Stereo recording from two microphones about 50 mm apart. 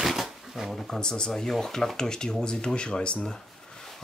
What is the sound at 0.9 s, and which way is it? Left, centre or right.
Speech, centre.